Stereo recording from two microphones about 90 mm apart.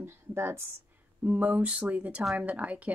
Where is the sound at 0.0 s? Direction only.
25° right (ahead or behind).